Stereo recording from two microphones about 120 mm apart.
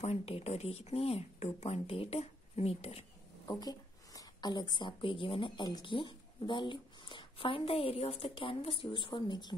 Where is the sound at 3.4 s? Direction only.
30° left (ahead or behind).